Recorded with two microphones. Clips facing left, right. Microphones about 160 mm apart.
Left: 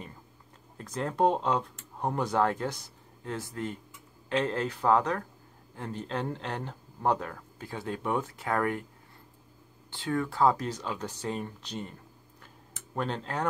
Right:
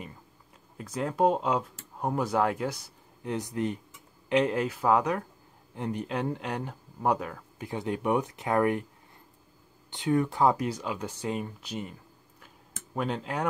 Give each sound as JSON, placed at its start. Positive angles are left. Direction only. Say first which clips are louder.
{"t": 0.7, "sound": "speech", "louder": "right 1 dB", "side_deg": -10}
{"t": 7.6, "sound": "speech", "louder": "right 4 dB", "side_deg": -20}
{"t": 9.8, "sound": "speech", "louder": "right 5 dB", "side_deg": -20}
{"t": 12.9, "sound": "speech", "louder": "right 1 dB", "side_deg": -10}